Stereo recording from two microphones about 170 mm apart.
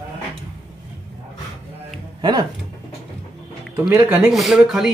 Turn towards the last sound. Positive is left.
turn(degrees=0)  # may be behind; listen again after turning